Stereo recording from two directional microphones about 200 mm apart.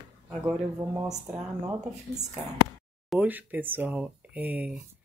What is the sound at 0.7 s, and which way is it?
Speech, 15° right (ahead or behind).